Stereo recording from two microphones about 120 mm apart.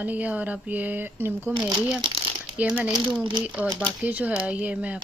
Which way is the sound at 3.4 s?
10° right (ahead or behind).